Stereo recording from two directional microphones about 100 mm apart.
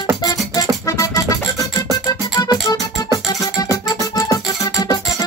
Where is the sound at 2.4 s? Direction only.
40° left (ahead or behind).